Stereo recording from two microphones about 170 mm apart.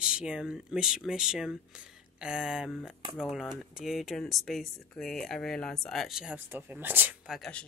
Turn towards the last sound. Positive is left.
turn(degrees=0)  # may be behind; listen again after turning